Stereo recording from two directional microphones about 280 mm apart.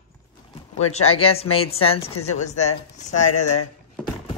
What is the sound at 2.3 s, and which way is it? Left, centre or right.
Speech, left.